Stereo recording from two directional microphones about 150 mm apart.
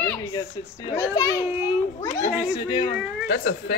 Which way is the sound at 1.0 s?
25° left (ahead or behind).